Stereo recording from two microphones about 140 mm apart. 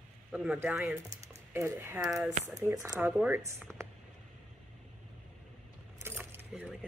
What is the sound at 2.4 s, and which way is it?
Speech, 20° right (ahead or behind).